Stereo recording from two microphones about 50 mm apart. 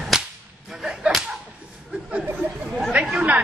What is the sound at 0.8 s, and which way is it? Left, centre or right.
Whip, centre.